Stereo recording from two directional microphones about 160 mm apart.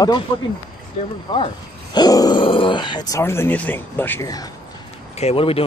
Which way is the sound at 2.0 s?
25° left (ahead or behind).